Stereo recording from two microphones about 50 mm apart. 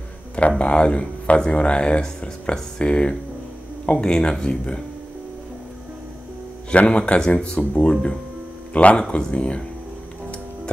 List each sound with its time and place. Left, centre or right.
0.5 s speech: left
6.7 s speech: left
8.7 s speech: left